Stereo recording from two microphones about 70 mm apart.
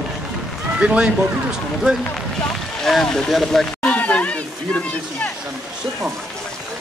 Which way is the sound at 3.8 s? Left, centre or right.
Left.